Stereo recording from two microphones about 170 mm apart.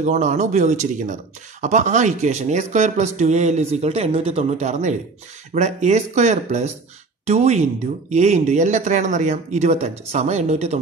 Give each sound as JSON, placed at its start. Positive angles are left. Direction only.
{"t": 0.0, "sound": "speech", "side_deg": -40}